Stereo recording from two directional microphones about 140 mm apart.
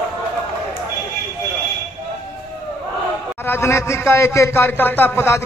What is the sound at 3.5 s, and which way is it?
Speech, 20° left (ahead or behind).